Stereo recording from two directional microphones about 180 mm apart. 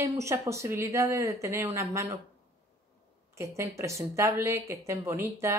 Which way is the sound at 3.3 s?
15° right (ahead or behind).